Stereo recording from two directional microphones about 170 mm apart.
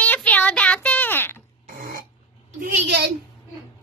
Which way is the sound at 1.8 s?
55° right (ahead or behind).